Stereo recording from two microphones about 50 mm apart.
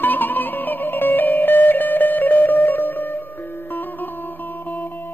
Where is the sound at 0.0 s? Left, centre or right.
Left.